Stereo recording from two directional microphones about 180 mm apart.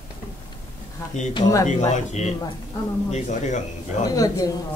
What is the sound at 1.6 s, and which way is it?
Speech, 40° left (ahead or behind).